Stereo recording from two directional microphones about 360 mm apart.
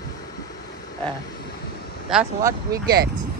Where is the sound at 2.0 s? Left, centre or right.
Centre.